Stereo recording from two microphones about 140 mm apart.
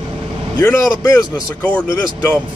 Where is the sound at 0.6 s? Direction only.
15° left (ahead or behind).